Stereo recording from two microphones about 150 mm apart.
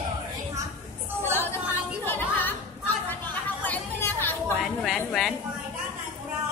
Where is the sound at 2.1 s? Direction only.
10° left (ahead or behind).